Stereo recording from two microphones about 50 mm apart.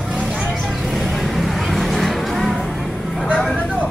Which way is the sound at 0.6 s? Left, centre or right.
Centre.